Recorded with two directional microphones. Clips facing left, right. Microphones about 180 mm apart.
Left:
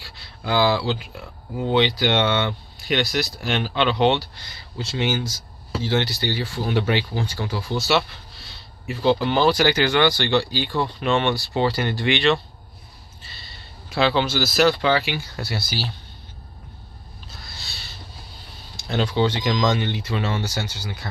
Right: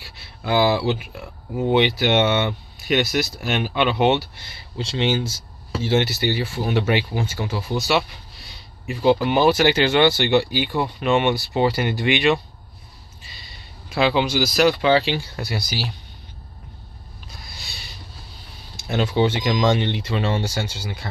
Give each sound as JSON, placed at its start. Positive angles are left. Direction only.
{"t": 0.0, "sound": "a sound", "side_deg": -20}
{"t": 1.6, "sound": "speech", "side_deg": -20}
{"t": 13.9, "sound": "speech", "side_deg": -10}
{"t": 15.0, "sound": "speech", "side_deg": -30}
{"t": 18.9, "sound": "speech", "side_deg": -20}